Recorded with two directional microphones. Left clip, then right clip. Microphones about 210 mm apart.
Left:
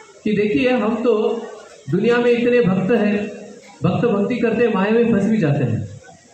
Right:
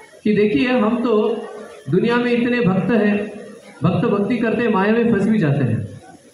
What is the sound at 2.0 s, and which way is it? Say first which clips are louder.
Speech: left 2 dB; 50° right (ahead or behind).